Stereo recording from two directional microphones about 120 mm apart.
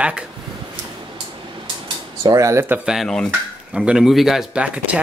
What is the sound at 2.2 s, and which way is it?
Speech, 25° right (ahead or behind).